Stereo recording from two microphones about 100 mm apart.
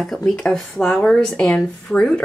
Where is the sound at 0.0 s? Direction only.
5° left (ahead or behind).